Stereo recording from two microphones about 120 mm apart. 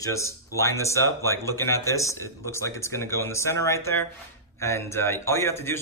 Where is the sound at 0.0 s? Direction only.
25° left (ahead or behind).